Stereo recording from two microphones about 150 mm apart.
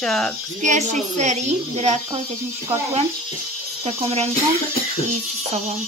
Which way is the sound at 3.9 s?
45° right (ahead or behind).